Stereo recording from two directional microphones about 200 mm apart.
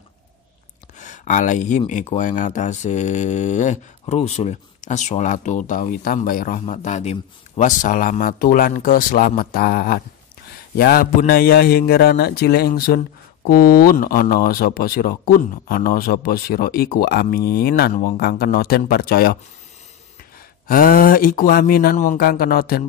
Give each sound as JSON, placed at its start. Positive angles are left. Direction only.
{"t": 0.9, "sound": "speech", "side_deg": 40}
{"t": 20.6, "sound": "speech", "side_deg": 45}